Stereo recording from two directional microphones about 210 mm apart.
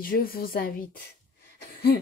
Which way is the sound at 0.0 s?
45° left (ahead or behind).